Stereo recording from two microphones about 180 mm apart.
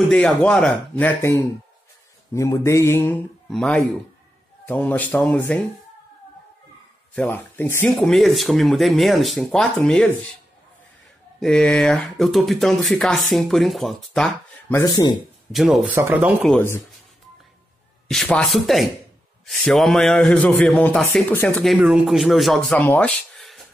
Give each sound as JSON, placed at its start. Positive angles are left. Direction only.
{"t": 0.1, "sound": "speech", "side_deg": 5}
{"t": 7.2, "sound": "speech", "side_deg": 10}
{"t": 7.9, "sound": "speech", "side_deg": 0}
{"t": 11.3, "sound": "speech", "side_deg": 5}
{"t": 14.7, "sound": "speech", "side_deg": 20}
{"t": 15.5, "sound": "speech", "side_deg": 0}
{"t": 16.4, "sound": "speech", "side_deg": 10}
{"t": 18.0, "sound": "speech", "side_deg": 5}